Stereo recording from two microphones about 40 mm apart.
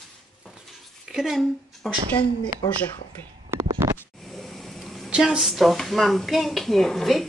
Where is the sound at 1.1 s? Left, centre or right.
Centre.